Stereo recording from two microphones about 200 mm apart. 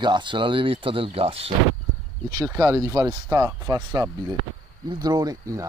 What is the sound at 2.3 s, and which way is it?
A man's voice, 15° right (ahead or behind).